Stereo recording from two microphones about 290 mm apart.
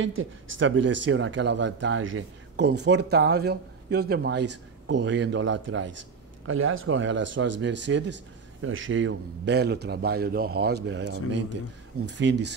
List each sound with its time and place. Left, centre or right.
0.0 s speech: right
5.9 s a sound: right
6.9 s speech: right